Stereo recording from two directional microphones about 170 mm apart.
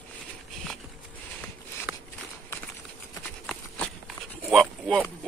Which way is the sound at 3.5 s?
Centre (ahead or behind).